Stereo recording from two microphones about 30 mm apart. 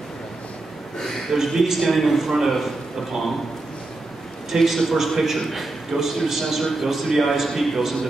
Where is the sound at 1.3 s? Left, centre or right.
Centre.